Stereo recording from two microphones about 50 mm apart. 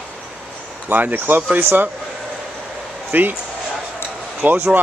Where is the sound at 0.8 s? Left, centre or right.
Right.